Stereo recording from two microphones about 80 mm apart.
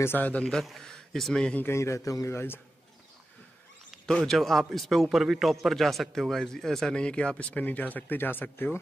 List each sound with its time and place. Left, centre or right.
0.0 s a man's voice: left
0.4 s a man's voice: centre
1.6 s a man's voice: left
2.3 s a man's voice: left
4.0 s a man's voice: centre; by 8.7 s left